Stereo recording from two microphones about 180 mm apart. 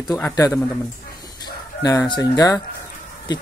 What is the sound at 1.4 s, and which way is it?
Speech, 20° left (ahead or behind).